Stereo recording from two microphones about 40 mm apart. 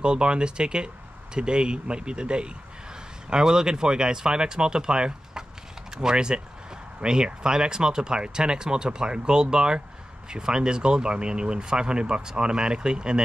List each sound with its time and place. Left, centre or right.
0.0 s speech: right